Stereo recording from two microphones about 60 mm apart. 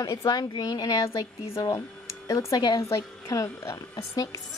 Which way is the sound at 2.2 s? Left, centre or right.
Left.